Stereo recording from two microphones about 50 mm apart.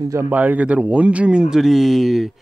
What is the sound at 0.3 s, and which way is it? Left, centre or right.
Speech, right.